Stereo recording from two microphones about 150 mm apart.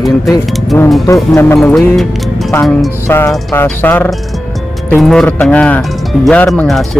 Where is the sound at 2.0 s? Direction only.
Centre (ahead or behind).